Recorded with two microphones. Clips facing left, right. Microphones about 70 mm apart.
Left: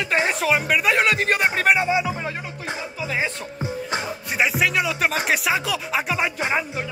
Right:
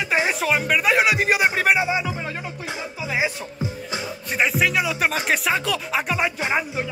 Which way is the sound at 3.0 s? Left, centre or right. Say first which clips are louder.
Right 2 dB; centre.